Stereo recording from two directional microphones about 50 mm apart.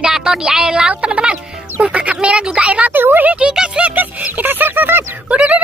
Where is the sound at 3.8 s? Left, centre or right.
Right.